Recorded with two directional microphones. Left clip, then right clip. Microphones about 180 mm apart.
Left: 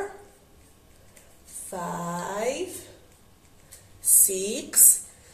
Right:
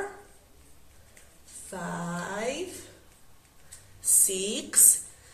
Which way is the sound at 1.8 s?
10° right (ahead or behind).